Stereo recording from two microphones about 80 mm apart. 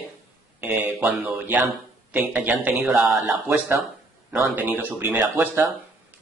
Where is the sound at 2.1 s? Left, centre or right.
Right.